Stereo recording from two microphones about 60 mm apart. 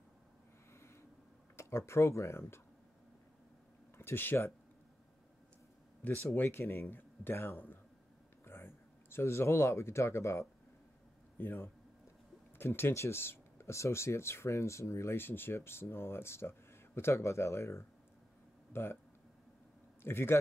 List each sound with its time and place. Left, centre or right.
1.6 s speech: left
4.0 s speech: left
6.0 s speech: left
11.3 s speech: left
18.7 s speech: left
20.0 s speech: left